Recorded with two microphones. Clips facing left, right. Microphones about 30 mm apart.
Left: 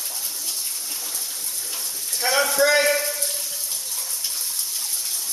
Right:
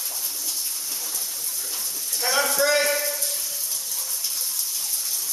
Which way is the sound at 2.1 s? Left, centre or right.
Centre.